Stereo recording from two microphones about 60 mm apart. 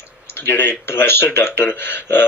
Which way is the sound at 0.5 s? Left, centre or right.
Left.